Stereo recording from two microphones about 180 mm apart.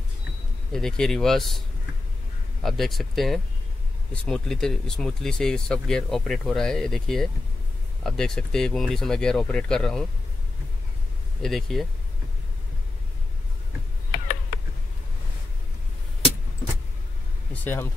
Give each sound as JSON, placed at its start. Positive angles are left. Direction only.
{"t": 0.7, "sound": "speech", "side_deg": 5}
{"t": 2.6, "sound": "speech", "side_deg": 0}
{"t": 11.4, "sound": "speech", "side_deg": 0}
{"t": 14.1, "sound": "a sound", "side_deg": 45}